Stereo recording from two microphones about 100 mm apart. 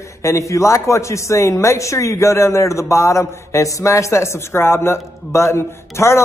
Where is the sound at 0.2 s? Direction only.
30° left (ahead or behind).